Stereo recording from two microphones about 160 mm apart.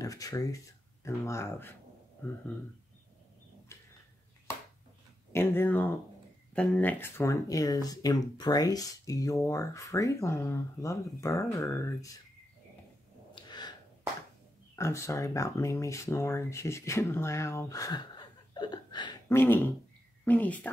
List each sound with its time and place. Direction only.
0.0 s speech: 20° left (ahead or behind)
3.7 s bird: 15° left (ahead or behind)
5.3 s speech: 15° left (ahead or behind)
13.3 s snort: 25° left (ahead or behind)
14.8 s speech: 15° left (ahead or behind)
19.2 s a sound: 15° left (ahead or behind)
20.2 s speech: 10° left (ahead or behind)